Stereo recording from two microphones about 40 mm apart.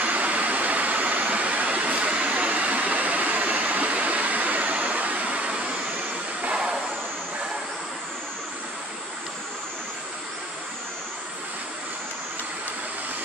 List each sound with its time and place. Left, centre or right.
0.0 s vehicle: right
6.5 s vehicle: centre